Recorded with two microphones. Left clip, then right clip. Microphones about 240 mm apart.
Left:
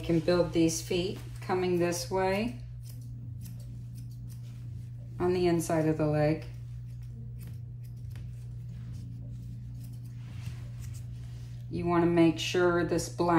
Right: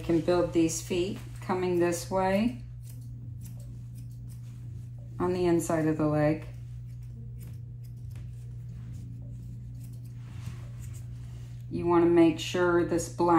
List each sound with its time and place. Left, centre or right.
0.2 s a woman's voice: centre
5.1 s a woman's voice: centre
11.7 s speech: centre